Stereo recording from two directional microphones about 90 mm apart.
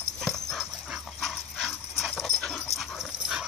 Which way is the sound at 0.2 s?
5° left (ahead or behind).